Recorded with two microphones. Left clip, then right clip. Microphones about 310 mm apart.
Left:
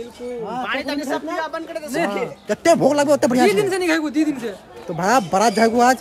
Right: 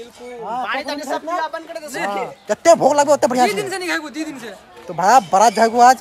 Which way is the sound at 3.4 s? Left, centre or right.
Centre.